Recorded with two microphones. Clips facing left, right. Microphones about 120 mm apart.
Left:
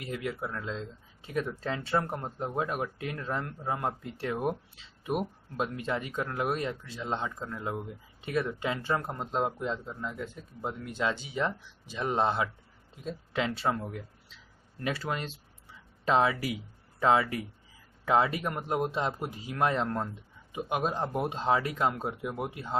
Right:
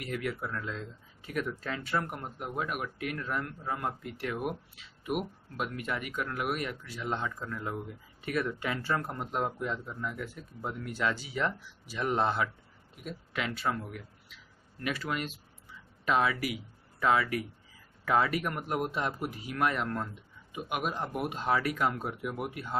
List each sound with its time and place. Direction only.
0.0 s speech: 20° left (ahead or behind)